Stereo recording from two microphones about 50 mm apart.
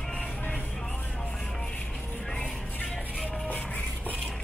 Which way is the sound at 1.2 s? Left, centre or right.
Centre.